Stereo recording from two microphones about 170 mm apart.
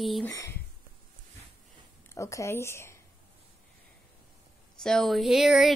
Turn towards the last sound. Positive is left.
turn(degrees=0)  # may be behind; listen again after turning